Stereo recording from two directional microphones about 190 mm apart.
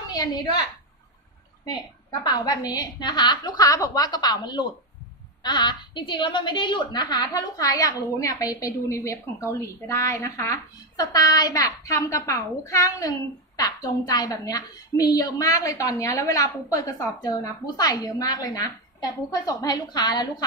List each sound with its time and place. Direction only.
0.1 s a woman's voice: 20° left (ahead or behind)
1.6 s a woman's voice: 20° left (ahead or behind)